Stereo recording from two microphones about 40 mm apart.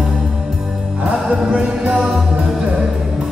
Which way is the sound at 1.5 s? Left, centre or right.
Right.